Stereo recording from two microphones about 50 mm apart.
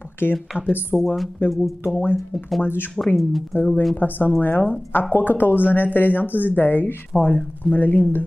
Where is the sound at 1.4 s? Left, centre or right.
Left.